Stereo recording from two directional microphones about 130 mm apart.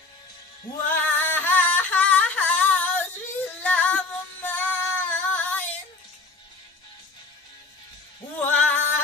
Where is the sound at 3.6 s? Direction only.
10° left (ahead or behind).